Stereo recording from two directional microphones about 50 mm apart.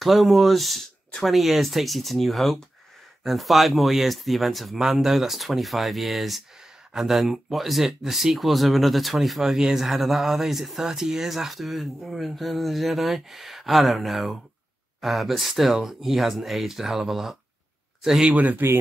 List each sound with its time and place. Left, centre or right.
0.0 s speech: centre
18.3 s speech: right